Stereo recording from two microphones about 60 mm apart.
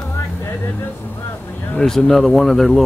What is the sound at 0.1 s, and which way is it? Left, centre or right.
Vehicle, left.